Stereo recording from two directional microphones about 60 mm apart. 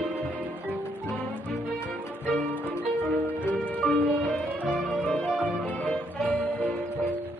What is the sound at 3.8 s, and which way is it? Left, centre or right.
Music, centre.